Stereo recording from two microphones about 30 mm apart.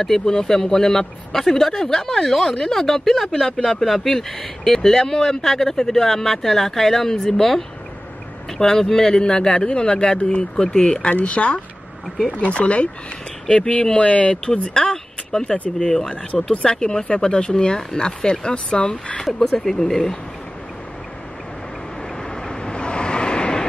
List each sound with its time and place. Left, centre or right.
0.2 s speech: centre; by 10.6 s left
10.6 s speech: left
11.2 s speech: left
13.6 s speech: left
13.9 s speech: left
14.7 s speech: left
16.6 s speech: left
19.6 s speech: centre
22.3 s vehicle: left